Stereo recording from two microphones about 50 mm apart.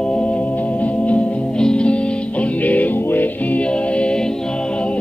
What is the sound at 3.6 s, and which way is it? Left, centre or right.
Music, left.